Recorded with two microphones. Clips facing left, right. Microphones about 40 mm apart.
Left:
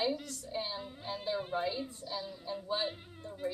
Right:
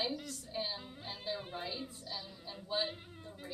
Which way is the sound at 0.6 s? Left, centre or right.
Centre.